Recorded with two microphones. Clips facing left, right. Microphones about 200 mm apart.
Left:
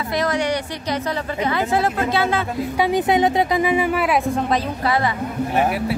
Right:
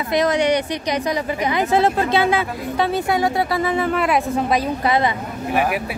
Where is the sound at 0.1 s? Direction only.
20° right (ahead or behind).